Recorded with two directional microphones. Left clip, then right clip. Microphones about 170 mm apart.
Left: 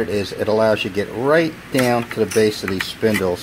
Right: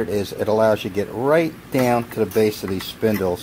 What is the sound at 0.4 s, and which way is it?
Speech, 10° right (ahead or behind).